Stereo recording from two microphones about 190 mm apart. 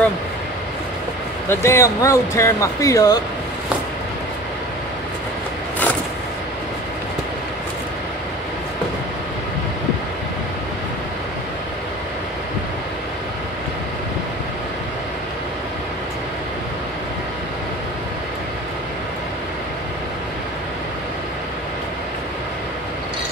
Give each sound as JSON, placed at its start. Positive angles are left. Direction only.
{"t": 1.5, "sound": "speech", "side_deg": 15}